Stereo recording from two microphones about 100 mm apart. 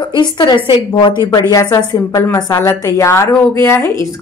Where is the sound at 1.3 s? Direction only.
40° left (ahead or behind).